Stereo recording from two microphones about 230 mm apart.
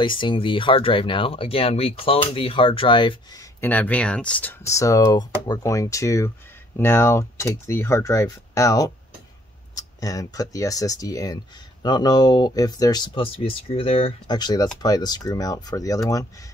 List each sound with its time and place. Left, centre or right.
0.0 s speech: left